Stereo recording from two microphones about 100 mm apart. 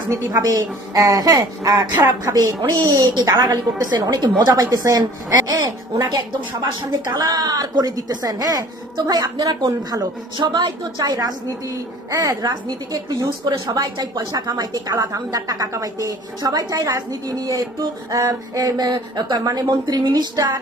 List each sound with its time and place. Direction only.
0.1 s a woman's voice: 40° right (ahead or behind)